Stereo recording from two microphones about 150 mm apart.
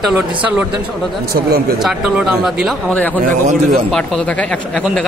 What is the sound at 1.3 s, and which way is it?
Speech, 90° right.